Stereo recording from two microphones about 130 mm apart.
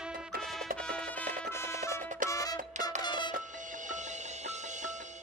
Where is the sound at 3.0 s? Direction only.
35° left (ahead or behind).